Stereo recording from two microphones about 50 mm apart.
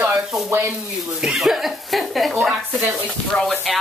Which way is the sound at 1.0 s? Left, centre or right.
Centre.